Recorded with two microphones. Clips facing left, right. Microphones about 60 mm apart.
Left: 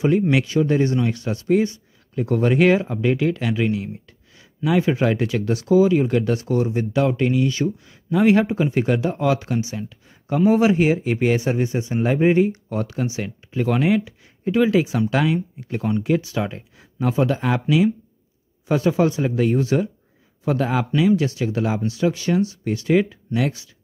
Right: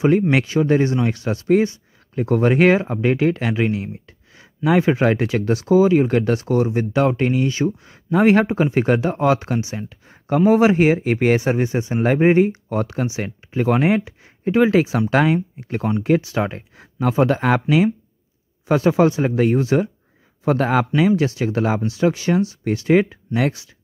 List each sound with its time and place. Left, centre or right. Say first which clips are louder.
0.3 s speech: right 2 dB; right
7.8 s speech: right 2 dB; right
11.3 s speech: right 2 dB; right
13.0 s speech: right 1 dB; right
20.4 s speech: right 4 dB; right
21.8 s speech: right 2 dB; right